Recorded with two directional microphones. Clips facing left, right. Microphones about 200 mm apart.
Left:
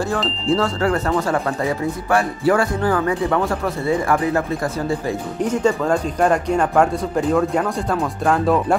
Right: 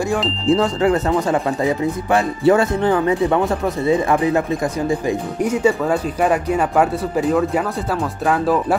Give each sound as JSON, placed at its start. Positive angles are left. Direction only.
{"t": 0.5, "sound": "speech", "side_deg": -20}
{"t": 2.1, "sound": "speech", "side_deg": -20}
{"t": 5.4, "sound": "speech", "side_deg": -10}